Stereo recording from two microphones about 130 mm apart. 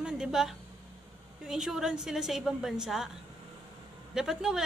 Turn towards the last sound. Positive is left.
turn(degrees=-5)  # may be behind; listen again after turning